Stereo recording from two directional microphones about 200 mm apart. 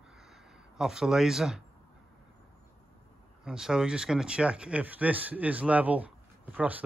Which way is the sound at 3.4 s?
5° right (ahead or behind).